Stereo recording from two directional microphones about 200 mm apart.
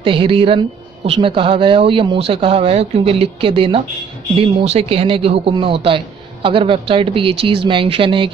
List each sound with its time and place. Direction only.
0.0 s a man's voice: 25° right (ahead or behind)